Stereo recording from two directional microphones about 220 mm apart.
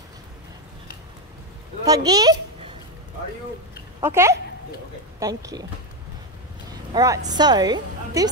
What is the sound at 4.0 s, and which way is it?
A woman's voice, 10° right (ahead or behind).